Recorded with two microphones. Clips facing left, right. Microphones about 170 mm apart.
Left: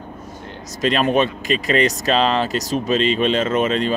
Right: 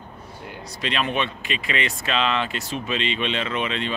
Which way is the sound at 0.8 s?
40° left (ahead or behind).